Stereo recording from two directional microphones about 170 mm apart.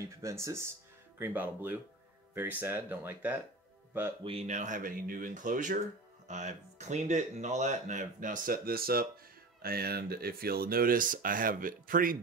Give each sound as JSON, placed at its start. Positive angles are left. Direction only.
{"t": 0.0, "sound": "speech", "side_deg": -15}
{"t": 4.2, "sound": "speech", "side_deg": -35}